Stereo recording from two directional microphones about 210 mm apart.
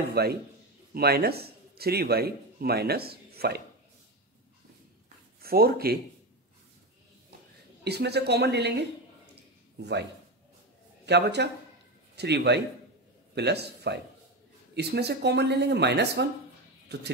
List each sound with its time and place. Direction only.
0.2 s speech: 50° right (ahead or behind)
5.4 s speech: 45° right (ahead or behind)
7.8 s speech: 50° right (ahead or behind)
9.3 s a sound: 50° right (ahead or behind)
11.1 s a man's voice: 50° right (ahead or behind)